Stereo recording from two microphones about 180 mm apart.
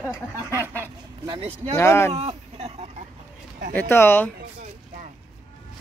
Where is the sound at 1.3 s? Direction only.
35° right (ahead or behind).